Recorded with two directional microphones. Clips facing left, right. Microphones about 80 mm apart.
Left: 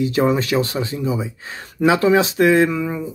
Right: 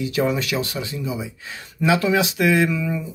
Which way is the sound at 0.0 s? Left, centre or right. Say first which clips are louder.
Left 4 dB; left.